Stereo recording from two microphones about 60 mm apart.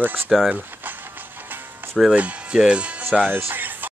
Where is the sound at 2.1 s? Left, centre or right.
Centre.